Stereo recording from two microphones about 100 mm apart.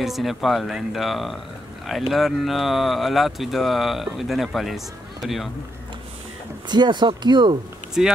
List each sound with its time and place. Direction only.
0.0 s speech: centre (ahead or behind)
6.7 s speech: 50° right (ahead or behind)
8.0 s speech: 5° right (ahead or behind)